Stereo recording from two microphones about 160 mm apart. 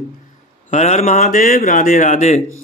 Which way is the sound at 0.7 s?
45° left (ahead or behind).